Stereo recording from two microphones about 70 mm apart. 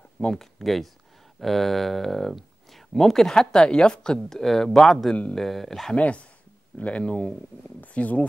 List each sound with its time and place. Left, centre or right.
0.3 s speech: centre
5.9 s speech: centre